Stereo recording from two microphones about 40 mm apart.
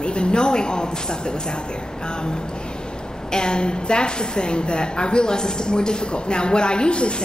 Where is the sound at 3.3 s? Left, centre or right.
Left.